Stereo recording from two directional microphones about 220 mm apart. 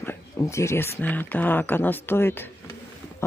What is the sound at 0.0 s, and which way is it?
Speech, 10° left (ahead or behind).